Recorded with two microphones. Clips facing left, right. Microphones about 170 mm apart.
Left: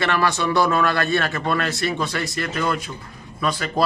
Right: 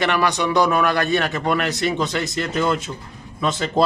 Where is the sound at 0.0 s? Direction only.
15° right (ahead or behind).